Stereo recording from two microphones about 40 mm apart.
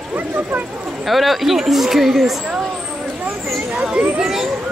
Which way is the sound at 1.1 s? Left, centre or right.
Centre.